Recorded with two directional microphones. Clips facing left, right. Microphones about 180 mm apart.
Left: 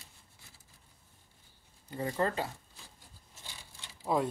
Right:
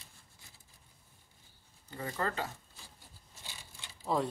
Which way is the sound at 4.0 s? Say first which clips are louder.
Left 2 dB; 5° left (ahead or behind).